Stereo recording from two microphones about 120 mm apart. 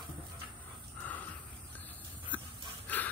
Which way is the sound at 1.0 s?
15° left (ahead or behind).